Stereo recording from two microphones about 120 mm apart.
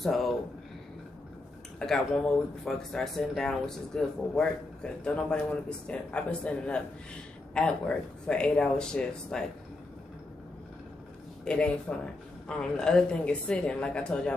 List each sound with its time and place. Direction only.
0.0 s speech: centre (ahead or behind)
1.8 s speech: 5° left (ahead or behind)
11.4 s speech: 10° left (ahead or behind)